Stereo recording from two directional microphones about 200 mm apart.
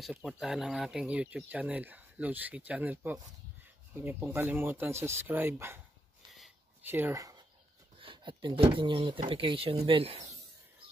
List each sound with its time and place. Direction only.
0.0 s speech: centre (ahead or behind)
6.9 s speech: 10° right (ahead or behind); by 10.2 s 30° right (ahead or behind)